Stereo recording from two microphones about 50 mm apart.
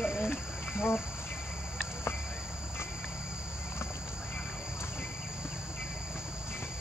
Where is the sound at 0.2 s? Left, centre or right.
Left.